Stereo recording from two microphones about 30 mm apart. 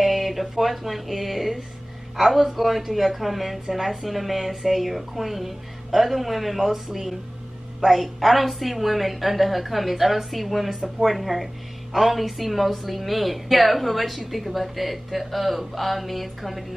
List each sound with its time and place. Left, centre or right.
0.0 s a woman's voice: centre